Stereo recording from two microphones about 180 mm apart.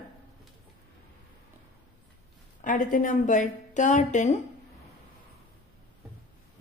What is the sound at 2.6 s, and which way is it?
A woman's voice, 45° left (ahead or behind).